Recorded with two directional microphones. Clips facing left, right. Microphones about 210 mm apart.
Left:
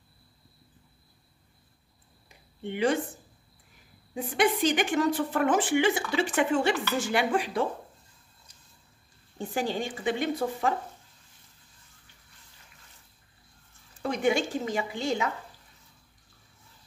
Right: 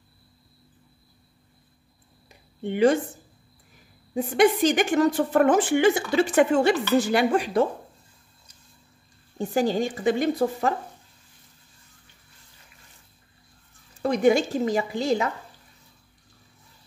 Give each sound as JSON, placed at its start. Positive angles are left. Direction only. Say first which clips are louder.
{"t": 2.7, "sound": "a woman's voice", "louder": "right 7 dB", "side_deg": -40}
{"t": 4.1, "sound": "a woman's voice", "louder": "right 6 dB", "side_deg": -45}
{"t": 9.5, "sound": "a woman's voice", "louder": "right 7 dB", "side_deg": -40}
{"t": 14.0, "sound": "a woman's voice", "louder": "right 6 dB", "side_deg": -40}